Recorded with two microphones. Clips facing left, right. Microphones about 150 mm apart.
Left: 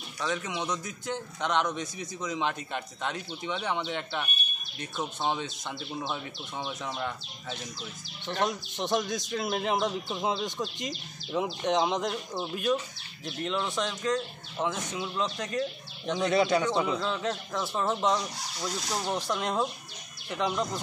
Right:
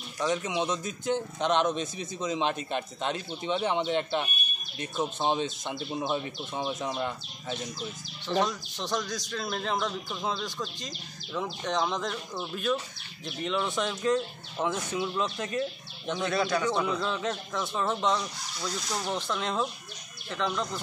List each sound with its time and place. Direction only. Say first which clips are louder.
0.2 s a man's voice: right 4 dB; 20° right (ahead or behind)
8.5 s speech: left 3 dB; 20° left (ahead or behind)
13.2 s speech: right 1 dB; centre (ahead or behind)
16.2 s speech: left 3 dB; 20° left (ahead or behind)
17.0 s speech: even; centre (ahead or behind); by 20.8 s 15° left (ahead or behind)